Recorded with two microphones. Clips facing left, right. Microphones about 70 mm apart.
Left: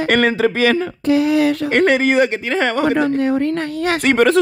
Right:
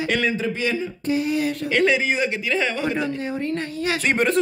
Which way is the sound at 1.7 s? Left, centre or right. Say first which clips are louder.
Left 5 dB; left.